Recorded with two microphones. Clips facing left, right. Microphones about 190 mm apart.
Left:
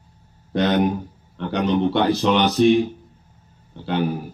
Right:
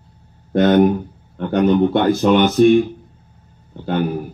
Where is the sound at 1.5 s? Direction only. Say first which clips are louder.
Right 5 dB; 50° right (ahead or behind).